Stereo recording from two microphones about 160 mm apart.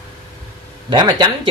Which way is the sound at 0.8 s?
25° right (ahead or behind).